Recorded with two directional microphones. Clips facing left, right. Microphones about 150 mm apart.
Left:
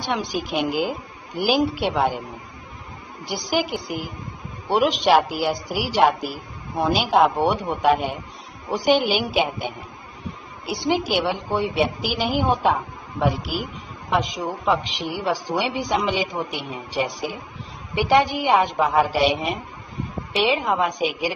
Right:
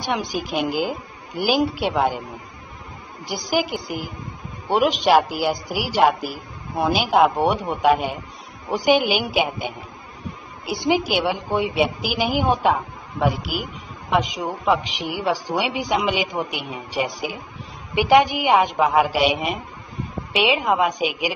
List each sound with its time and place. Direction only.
0.1 s a woman's voice: 10° right (ahead or behind)
3.3 s a woman's voice: centre (ahead or behind)
10.7 s a woman's voice: centre (ahead or behind)